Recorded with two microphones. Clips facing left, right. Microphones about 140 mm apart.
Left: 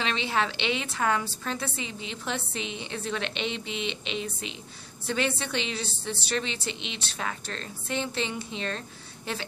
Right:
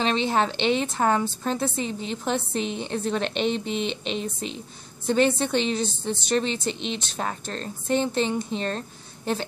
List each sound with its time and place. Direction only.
0.0 s a woman's voice: 35° right (ahead or behind)